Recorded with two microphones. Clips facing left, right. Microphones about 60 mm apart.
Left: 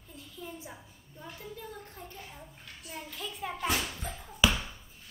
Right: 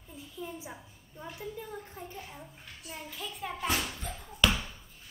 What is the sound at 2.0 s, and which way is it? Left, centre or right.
A child's voice, centre.